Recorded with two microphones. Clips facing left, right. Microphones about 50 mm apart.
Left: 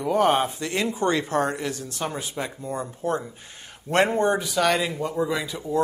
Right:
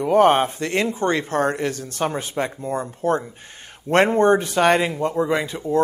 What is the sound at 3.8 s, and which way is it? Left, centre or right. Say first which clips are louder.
Speech: right 5 dB; right.